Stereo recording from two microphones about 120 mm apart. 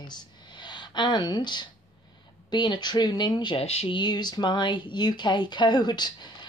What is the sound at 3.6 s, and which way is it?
Speech, 55° left (ahead or behind).